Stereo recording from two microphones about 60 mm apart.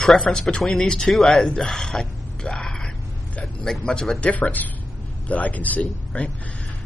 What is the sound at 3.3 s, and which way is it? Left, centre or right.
Vehicle, centre.